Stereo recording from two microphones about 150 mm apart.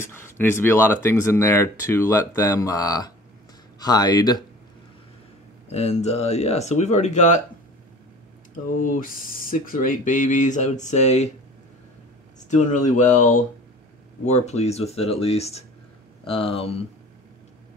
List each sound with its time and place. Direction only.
0.0 s speech: 15° left (ahead or behind)
5.7 s speech: 50° left (ahead or behind)
8.6 s speech: 65° left (ahead or behind); by 11.2 s 50° left (ahead or behind)
12.4 s speech: 55° left (ahead or behind)